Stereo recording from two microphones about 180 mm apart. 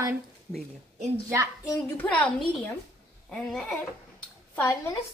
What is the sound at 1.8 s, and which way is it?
A woman's voice, 10° left (ahead or behind).